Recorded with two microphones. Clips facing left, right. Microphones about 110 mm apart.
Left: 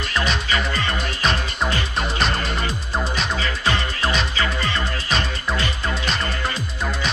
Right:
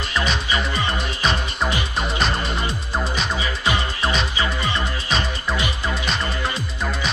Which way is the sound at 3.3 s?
15° right (ahead or behind).